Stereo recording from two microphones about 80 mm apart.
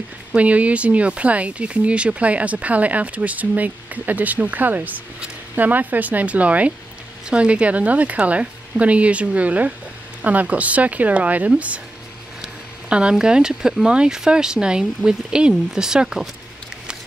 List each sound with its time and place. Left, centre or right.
0.3 s speech: centre
12.9 s speech: centre